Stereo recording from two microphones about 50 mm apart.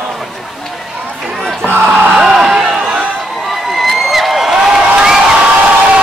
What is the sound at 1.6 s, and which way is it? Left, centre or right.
Speech, right.